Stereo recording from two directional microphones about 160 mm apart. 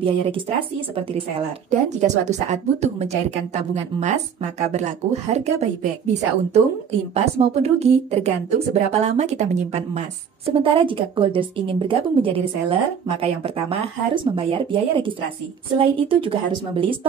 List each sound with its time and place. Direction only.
0.0 s speech: 35° right (ahead or behind)
2.0 s a woman's voice: 45° right (ahead or behind)